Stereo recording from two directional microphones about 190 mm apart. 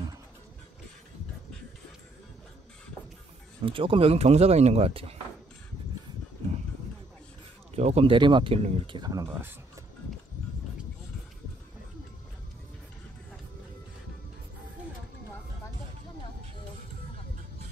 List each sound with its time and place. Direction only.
3.6 s speech: 30° right (ahead or behind)
7.7 s speech: 35° right (ahead or behind); by 9.5 s 15° right (ahead or behind)